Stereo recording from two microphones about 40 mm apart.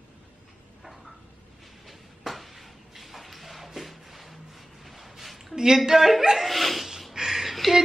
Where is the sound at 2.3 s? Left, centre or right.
Centre.